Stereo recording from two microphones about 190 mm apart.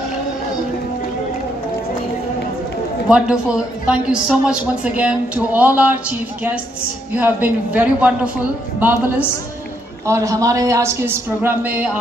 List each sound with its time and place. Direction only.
3.1 s speech: 5° right (ahead or behind)
10.0 s speech: 15° right (ahead or behind)